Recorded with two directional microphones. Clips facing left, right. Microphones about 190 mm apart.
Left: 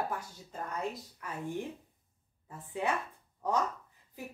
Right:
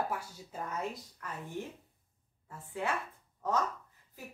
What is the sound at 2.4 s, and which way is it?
A woman's voice, 20° left (ahead or behind).